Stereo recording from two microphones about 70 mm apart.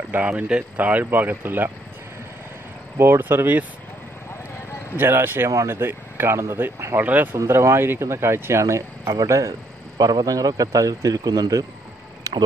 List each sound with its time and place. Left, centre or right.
0.1 s speech: right
3.0 s speech: right
4.9 s speech: right
7.0 s speech: right
7.3 s a man's voice: right